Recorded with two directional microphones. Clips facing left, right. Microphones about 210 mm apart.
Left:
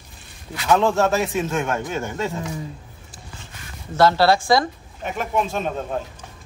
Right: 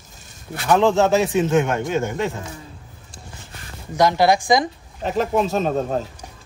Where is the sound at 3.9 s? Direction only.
15° right (ahead or behind).